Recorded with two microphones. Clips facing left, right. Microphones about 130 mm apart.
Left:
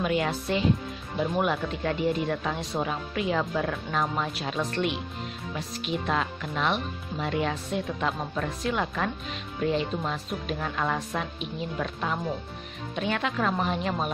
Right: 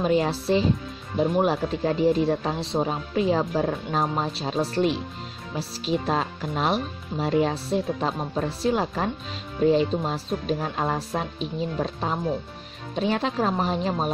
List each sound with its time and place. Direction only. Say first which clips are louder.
0.0 s speech: right 4 dB; 35° right (ahead or behind)